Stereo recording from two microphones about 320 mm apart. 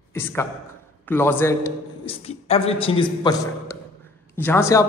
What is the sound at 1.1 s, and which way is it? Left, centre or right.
A man's voice, centre.